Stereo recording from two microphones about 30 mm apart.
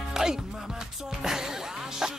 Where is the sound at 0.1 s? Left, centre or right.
Centre.